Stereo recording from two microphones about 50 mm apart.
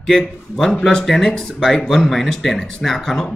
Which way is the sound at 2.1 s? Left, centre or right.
Centre.